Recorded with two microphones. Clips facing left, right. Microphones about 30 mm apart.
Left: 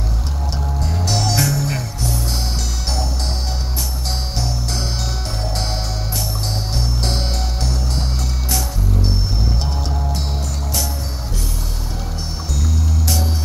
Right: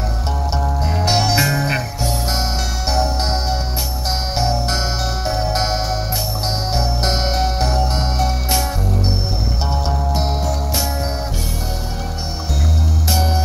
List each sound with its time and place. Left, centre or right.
0.6 s music: right
2.9 s music: right
4.4 s music: right
9.7 s music: right